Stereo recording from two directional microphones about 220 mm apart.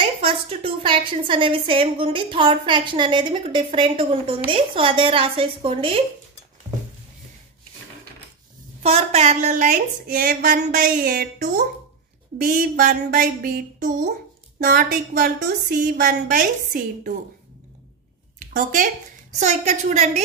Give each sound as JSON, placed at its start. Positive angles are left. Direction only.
{"t": 0.0, "sound": "a woman's voice", "side_deg": -25}
{"t": 8.8, "sound": "a woman's voice", "side_deg": -30}
{"t": 18.5, "sound": "a woman's voice", "side_deg": -35}